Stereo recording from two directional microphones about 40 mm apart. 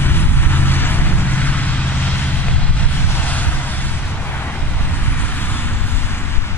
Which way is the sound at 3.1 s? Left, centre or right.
Left.